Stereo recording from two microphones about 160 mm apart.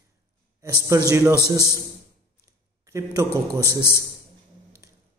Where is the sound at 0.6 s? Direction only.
20° right (ahead or behind).